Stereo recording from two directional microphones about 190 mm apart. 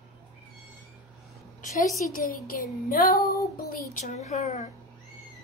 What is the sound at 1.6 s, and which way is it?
A woman's voice, 45° left (ahead or behind).